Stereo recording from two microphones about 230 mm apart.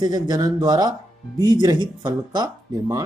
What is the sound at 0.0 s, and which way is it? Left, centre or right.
Speech, centre.